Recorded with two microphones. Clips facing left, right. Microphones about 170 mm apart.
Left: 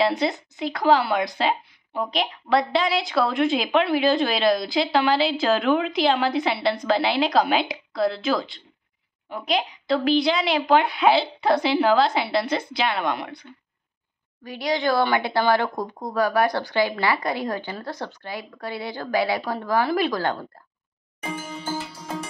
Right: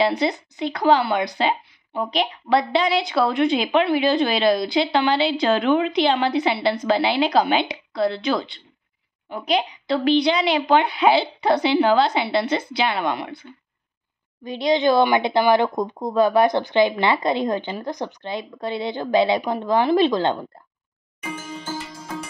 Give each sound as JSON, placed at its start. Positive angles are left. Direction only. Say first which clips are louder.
{"t": 0.0, "sound": "a woman's voice", "louder": "right 2 dB", "side_deg": 0}
{"t": 14.4, "sound": "speech", "louder": "right 5 dB", "side_deg": -20}